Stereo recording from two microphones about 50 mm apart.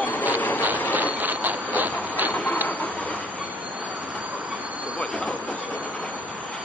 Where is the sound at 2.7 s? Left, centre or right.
Left.